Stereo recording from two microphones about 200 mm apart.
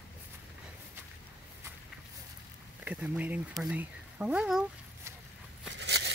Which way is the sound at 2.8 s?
5° right (ahead or behind).